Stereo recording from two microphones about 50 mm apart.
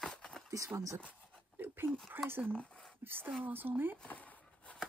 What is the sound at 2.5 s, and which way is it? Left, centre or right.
Speech, left.